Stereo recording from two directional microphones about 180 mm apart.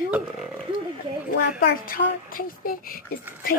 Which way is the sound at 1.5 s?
50° left (ahead or behind).